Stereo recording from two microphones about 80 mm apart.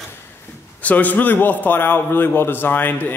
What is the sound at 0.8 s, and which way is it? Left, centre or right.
A man's voice, left.